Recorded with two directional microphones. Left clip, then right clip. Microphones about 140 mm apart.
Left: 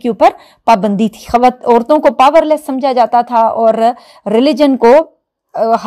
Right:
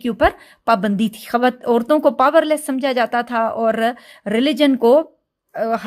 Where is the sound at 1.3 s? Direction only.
20° right (ahead or behind).